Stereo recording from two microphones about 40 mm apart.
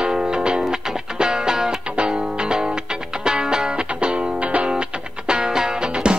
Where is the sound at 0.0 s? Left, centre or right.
Centre.